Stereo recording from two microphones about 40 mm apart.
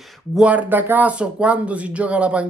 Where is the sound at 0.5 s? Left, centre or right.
Right.